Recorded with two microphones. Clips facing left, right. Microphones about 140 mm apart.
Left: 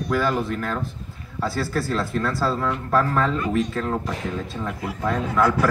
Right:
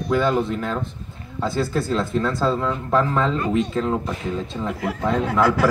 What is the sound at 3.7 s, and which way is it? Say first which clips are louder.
Speech: right 3 dB; 15° right (ahead or behind).